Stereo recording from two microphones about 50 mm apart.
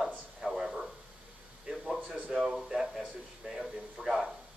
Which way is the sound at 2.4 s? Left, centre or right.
Centre.